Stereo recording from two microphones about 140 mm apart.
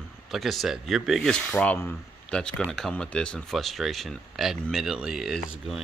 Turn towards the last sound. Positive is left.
turn(degrees=0)  # may be behind; listen again after turning